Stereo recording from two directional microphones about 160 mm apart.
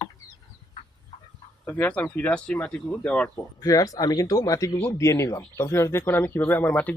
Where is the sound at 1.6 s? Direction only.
10° left (ahead or behind).